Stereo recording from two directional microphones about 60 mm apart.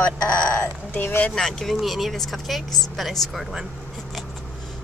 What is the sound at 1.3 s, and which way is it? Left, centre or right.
Speech, centre.